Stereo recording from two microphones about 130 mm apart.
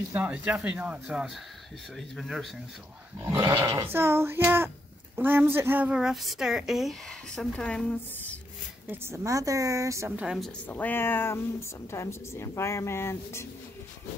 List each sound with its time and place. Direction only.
0.1 s a woman's voice: 10° right (ahead or behind)
3.2 s a woman's voice: 20° right (ahead or behind); by 8.4 s 10° left (ahead or behind)
8.9 s speech: 20° right (ahead or behind)
10.1 s a woman's voice: 5° right (ahead or behind)
10.7 s speech: 15° left (ahead or behind)